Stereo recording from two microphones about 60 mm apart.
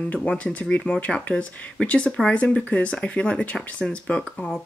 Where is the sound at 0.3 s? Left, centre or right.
Left.